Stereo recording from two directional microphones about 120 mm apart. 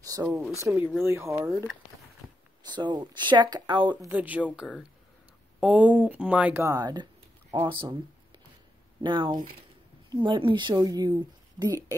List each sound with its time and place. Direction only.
0.0 s a sound: 30° right (ahead or behind)
0.7 s speech: 15° right (ahead or behind)
2.2 s a sound: 5° right (ahead or behind)
2.7 s a woman's voice: 40° right (ahead or behind)
4.1 s speech: 15° right (ahead or behind)
6.6 s a woman's voice: 30° right (ahead or behind)
9.0 s a woman's voice: 40° right (ahead or behind)